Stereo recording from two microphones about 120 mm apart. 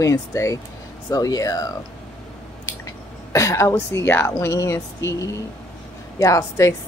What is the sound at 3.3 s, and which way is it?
Speech, 25° left (ahead or behind).